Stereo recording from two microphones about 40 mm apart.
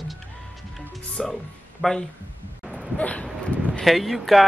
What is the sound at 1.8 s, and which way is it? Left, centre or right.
Speech, centre.